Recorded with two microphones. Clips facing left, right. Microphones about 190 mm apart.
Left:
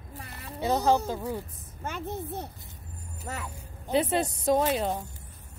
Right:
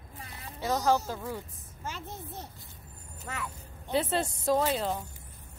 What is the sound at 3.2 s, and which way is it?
Speech, 40° left (ahead or behind).